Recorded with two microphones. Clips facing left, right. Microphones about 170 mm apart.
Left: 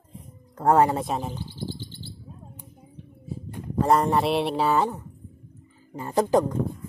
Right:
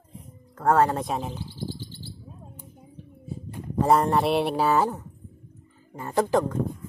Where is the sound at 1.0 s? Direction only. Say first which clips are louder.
Left 1 dB; centre (ahead or behind).